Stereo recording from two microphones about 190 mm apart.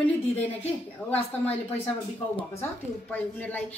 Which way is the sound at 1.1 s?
10° left (ahead or behind).